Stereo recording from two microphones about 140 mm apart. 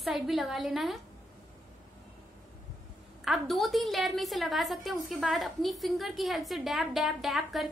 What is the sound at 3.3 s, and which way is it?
A woman's voice, centre (ahead or behind).